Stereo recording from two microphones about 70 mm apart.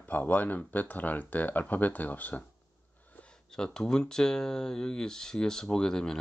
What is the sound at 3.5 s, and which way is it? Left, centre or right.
Speech, centre.